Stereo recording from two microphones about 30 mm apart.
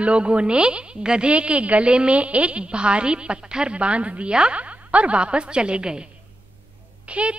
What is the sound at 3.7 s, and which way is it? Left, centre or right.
A woman's voice, right.